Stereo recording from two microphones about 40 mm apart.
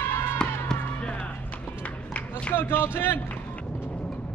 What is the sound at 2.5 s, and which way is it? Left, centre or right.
Speech, left.